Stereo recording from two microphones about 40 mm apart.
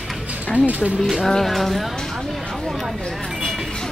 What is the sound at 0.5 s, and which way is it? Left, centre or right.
Speech, right.